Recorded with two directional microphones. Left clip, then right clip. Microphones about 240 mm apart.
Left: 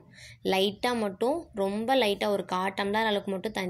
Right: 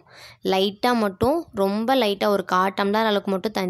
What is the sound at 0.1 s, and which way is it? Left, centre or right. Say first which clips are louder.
Speech: right 5 dB; right.